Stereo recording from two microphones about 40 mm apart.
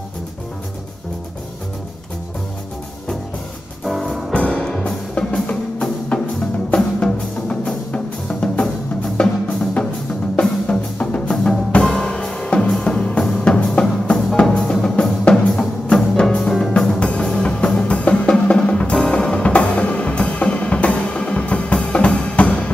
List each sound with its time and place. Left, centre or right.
4.3 s music: left
4.6 s music: centre
4.8 s music: left
6.4 s music: left
13.4 s music: left; by 16.7 s centre
17.2 s music: left
18.5 s drum: left
18.9 s music: centre
19.4 s music: left